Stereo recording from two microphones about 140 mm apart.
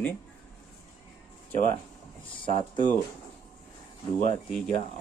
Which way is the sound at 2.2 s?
40° left (ahead or behind).